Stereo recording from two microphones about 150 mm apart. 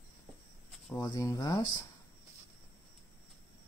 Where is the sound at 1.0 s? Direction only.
25° left (ahead or behind).